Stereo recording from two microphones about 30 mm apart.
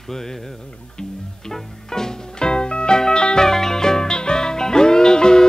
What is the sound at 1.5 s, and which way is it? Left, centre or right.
Music, centre.